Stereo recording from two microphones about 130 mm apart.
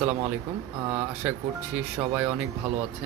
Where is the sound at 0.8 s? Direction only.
10° right (ahead or behind).